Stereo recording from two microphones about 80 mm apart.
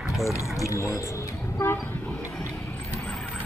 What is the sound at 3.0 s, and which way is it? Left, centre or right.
Vehicle, centre.